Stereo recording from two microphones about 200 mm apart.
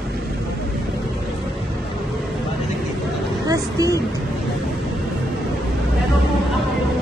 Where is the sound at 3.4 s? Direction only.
15° right (ahead or behind).